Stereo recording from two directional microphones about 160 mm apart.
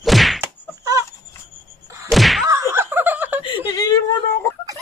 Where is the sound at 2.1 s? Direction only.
Centre (ahead or behind).